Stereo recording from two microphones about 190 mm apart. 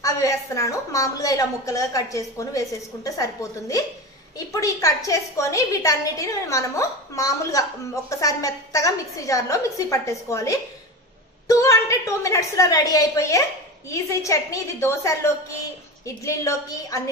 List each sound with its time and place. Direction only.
0.0 s a woman's voice: 15° left (ahead or behind)